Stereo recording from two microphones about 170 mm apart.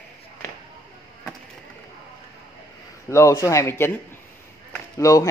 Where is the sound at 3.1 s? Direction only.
20° left (ahead or behind).